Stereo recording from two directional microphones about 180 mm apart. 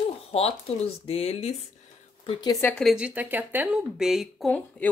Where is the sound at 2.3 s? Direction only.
25° left (ahead or behind).